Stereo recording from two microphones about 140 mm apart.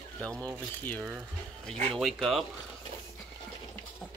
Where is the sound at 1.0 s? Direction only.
5° right (ahead or behind).